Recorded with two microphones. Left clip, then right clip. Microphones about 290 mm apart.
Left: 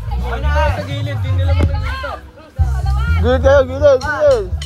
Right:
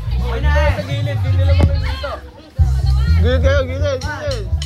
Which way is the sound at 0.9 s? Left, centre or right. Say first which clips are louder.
Right 1 dB; right.